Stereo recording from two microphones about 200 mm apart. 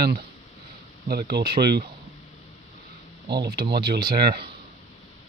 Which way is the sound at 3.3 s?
55° right (ahead or behind).